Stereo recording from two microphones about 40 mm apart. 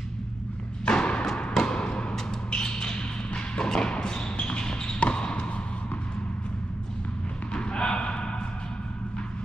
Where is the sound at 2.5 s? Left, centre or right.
Left.